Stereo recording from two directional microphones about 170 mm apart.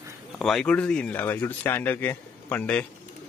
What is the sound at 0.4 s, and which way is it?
Speech, 5° left (ahead or behind).